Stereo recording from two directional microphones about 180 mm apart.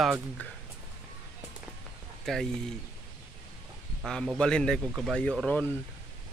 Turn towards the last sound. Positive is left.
turn(degrees=5)  # may be behind; listen again after turning